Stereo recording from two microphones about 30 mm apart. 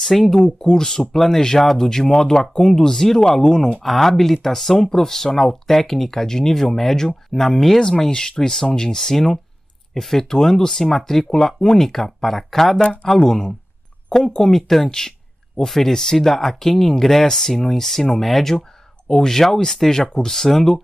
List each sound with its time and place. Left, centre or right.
0.4 s speech: left
3.8 s speech: centre
7.8 s speech: left
11.9 s speech: centre
14.9 s a sound: left
15.6 s speech: centre
19.0 s speech: centre